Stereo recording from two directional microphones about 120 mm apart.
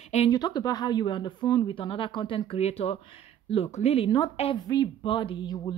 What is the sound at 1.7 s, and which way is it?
A woman's voice, 45° left (ahead or behind).